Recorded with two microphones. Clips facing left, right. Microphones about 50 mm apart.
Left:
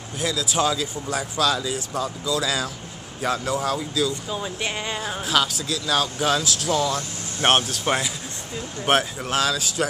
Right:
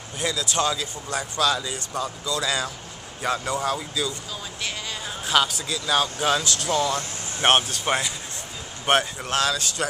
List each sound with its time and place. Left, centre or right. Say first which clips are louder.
0.2 s speech: left 2 dB; centre
4.3 s speech: left 5 dB; left
5.2 s speech: right 2 dB; centre